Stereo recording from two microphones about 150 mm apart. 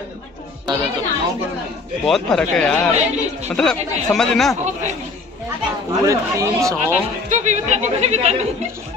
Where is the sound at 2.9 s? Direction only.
50° right (ahead or behind).